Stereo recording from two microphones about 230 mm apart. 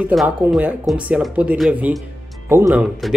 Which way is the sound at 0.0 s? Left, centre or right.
Centre.